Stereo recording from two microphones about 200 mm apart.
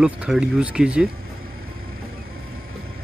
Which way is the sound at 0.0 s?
5° right (ahead or behind).